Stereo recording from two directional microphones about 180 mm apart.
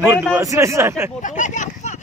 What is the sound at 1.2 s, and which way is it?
Speech, 45° left (ahead or behind).